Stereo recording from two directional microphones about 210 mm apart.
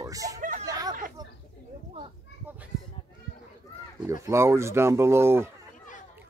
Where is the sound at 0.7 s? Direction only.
15° right (ahead or behind).